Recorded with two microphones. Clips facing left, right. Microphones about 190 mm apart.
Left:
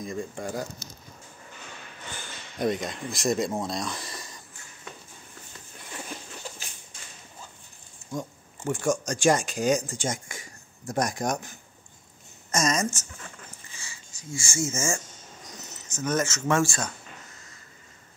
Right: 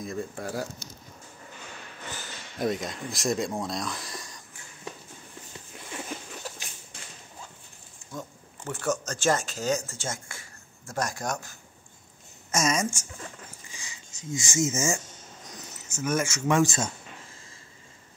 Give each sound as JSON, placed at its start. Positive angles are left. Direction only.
{"t": 0.0, "sound": "speech", "side_deg": 0}
{"t": 2.6, "sound": "speech", "side_deg": 0}
{"t": 8.1, "sound": "speech", "side_deg": 15}
{"t": 12.4, "sound": "speech", "side_deg": -5}
{"t": 13.7, "sound": "a sound", "side_deg": -15}
{"t": 15.9, "sound": "speech", "side_deg": -10}